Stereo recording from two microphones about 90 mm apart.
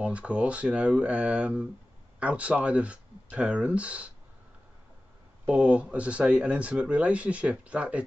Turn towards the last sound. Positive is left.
turn(degrees=-15)  # may be behind; listen again after turning